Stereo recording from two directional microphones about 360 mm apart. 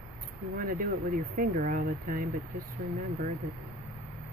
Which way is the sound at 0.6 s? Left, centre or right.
Right.